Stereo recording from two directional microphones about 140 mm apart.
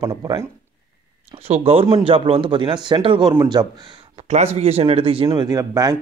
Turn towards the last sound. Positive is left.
turn(degrees=-25)  # may be behind; listen again after turning